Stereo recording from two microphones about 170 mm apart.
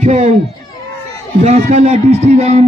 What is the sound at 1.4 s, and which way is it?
A man's voice, 40° right (ahead or behind).